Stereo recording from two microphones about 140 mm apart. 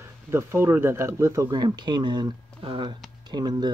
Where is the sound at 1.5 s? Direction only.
30° right (ahead or behind).